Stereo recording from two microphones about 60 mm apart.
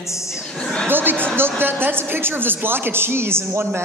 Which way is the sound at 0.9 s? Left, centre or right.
Right.